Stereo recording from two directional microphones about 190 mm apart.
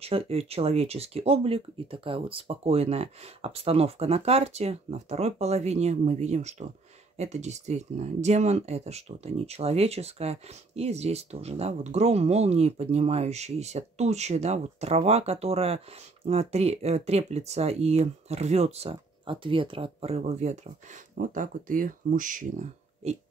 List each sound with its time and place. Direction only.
0.0 s speech: 30° right (ahead or behind)